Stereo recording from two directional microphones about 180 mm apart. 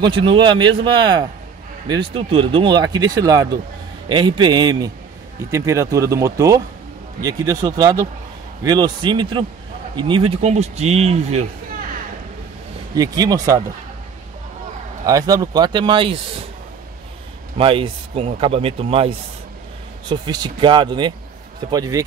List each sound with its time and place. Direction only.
0.0 s speech: 25° right (ahead or behind)
12.9 s speech: 20° right (ahead or behind)
15.0 s speech: 20° right (ahead or behind)
17.6 s speech: 30° right (ahead or behind)